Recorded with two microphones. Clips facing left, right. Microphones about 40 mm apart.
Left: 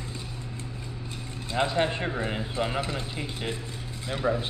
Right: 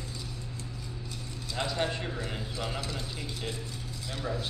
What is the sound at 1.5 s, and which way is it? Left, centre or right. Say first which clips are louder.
A man's voice: left 6 dB; left.